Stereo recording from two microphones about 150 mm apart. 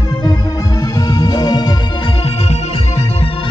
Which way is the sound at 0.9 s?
25° left (ahead or behind).